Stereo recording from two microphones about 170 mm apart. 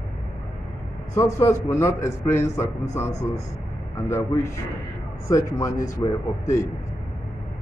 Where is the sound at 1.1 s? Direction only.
15° left (ahead or behind).